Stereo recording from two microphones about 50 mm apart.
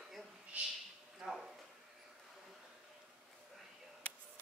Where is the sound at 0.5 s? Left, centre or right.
Right.